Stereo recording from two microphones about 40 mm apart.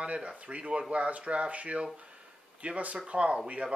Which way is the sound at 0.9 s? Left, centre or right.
Right.